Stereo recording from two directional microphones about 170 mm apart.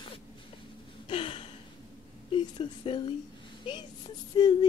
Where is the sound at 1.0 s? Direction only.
30° left (ahead or behind).